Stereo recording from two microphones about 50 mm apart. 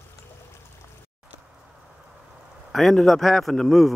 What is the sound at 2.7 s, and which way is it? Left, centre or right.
A man's voice, centre.